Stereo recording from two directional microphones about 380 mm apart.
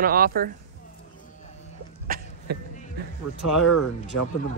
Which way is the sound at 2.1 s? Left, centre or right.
Right.